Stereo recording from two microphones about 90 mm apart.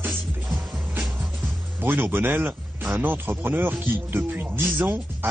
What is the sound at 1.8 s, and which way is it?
Speech, 25° right (ahead or behind).